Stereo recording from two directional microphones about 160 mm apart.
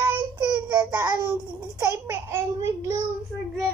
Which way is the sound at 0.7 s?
25° right (ahead or behind).